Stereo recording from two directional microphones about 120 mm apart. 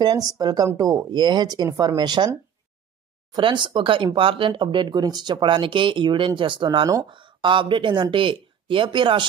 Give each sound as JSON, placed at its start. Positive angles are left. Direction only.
{"t": 0.0, "sound": "speech", "side_deg": -30}